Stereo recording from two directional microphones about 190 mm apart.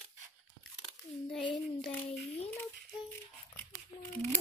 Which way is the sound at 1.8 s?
5° left (ahead or behind).